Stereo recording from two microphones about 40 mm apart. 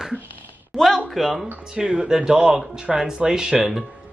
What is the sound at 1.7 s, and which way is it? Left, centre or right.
Speech, right.